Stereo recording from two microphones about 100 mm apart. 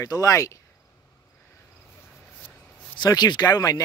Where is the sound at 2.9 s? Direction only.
45° left (ahead or behind).